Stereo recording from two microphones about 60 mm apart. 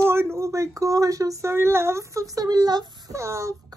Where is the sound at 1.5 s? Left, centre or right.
Right.